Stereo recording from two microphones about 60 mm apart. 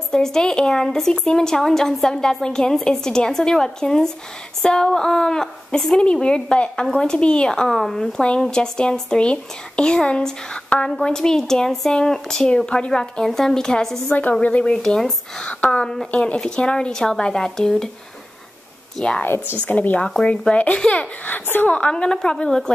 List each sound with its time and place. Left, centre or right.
0.1 s speech: centre
8.2 s speech: centre
14.0 s a child's voice: left
14.4 s a child's voice: centre
14.8 s speech: centre
15.6 s a child's voice: centre
18.9 s speech: centre
19.6 s a child's voice: left
21.3 s a woman's voice: left
21.6 s speech: centre